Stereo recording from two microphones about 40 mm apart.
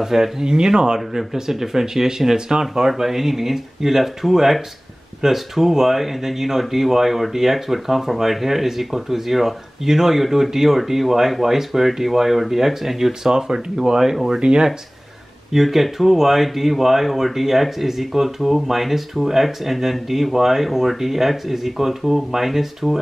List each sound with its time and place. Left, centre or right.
0.0 s speech: centre
14.4 s speech: right
15.5 s speech: centre